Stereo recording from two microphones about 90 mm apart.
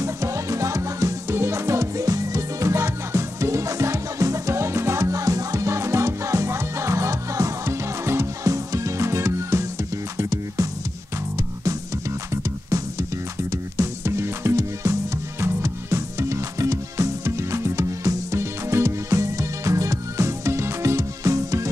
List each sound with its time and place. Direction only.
0.0 s music: 35° right (ahead or behind)
12.4 s music: 35° right (ahead or behind)